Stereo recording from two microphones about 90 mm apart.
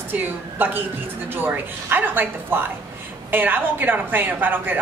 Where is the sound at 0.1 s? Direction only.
20° right (ahead or behind).